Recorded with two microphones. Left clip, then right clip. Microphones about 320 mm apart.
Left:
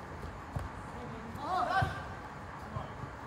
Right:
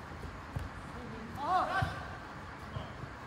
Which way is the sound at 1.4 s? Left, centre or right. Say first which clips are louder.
Right 2 dB; centre.